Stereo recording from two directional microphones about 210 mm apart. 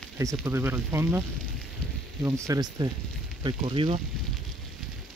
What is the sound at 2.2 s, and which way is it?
Speech, 15° right (ahead or behind).